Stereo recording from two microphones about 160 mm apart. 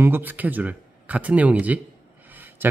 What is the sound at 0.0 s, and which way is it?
A man's voice, 10° right (ahead or behind).